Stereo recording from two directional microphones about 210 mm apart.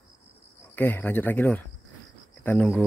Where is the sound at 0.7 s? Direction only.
10° left (ahead or behind).